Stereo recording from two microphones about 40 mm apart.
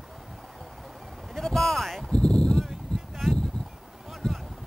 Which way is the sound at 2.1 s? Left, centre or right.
Left.